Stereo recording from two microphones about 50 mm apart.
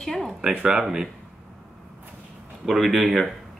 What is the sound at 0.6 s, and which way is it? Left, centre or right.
Speech, centre.